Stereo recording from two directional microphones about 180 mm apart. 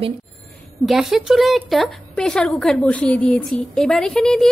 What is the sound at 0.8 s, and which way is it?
A woman's voice, centre (ahead or behind).